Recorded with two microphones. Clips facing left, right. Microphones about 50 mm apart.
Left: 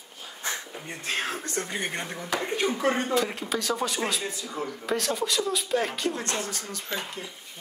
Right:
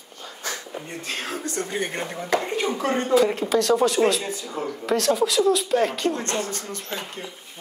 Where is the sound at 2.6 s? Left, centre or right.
Centre.